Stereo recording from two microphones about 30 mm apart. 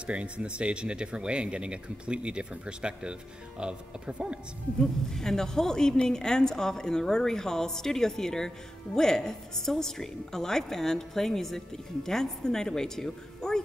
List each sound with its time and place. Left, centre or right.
0.0 s speech: right
4.7 s a woman's voice: centre